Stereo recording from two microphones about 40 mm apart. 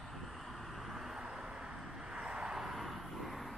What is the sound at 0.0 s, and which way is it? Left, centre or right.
Vehicle, centre.